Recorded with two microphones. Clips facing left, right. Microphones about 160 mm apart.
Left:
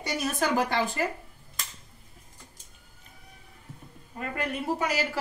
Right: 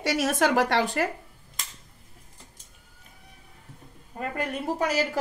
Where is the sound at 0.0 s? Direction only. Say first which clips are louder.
Right 5 dB; 85° right.